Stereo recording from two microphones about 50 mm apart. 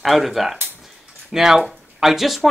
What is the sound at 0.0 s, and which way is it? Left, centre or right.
Speech, centre.